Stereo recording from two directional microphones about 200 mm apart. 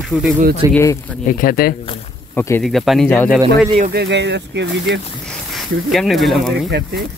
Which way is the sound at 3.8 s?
55° right (ahead or behind).